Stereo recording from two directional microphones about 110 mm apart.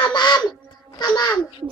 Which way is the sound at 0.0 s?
40° left (ahead or behind).